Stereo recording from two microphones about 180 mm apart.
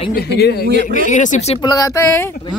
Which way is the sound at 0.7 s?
60° right (ahead or behind).